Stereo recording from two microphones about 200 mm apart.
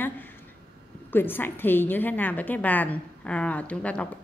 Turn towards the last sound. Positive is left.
turn(degrees=5)  # may be behind; listen again after turning